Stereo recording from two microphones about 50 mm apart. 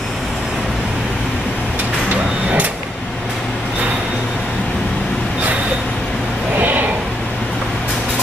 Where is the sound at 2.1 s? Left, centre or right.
Right.